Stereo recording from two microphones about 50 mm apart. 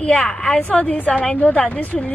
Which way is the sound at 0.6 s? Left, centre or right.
Left.